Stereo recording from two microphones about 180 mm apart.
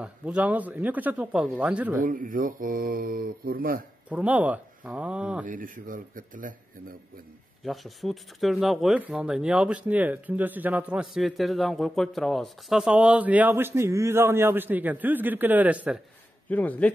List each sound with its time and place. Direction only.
0.0 s speech: 5° right (ahead or behind)
2.0 s speech: 50° right (ahead or behind)
4.1 s speech: 10° right (ahead or behind)
5.5 s speech: 50° right (ahead or behind)
7.6 s speech: centre (ahead or behind)
16.4 s speech: 10° left (ahead or behind)